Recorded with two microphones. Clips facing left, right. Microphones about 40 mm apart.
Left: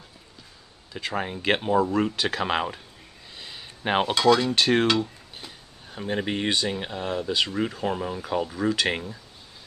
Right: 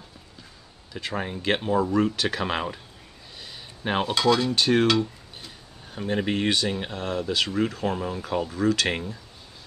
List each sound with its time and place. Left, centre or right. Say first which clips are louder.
0.9 s speech: left 1 dB; centre
3.3 s a sound: left 1 dB; centre
4.6 s speech: right 3 dB; centre
8.8 s speech: even; centre